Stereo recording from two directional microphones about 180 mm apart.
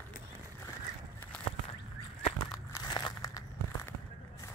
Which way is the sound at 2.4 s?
25° left (ahead or behind).